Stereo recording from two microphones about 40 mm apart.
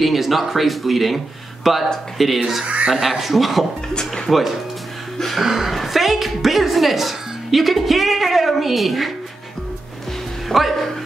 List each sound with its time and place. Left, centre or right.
0.0 s a woman's voice: centre
2.6 s speech: right
2.9 s a woman's voice: centre
3.9 s speech: centre
5.4 s a woman's voice: centre
10.5 s a woman's voice: centre